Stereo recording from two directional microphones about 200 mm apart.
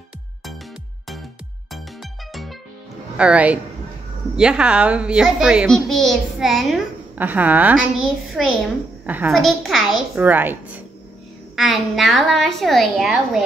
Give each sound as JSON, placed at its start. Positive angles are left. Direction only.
{"t": 3.2, "sound": "a woman's voice", "side_deg": -5}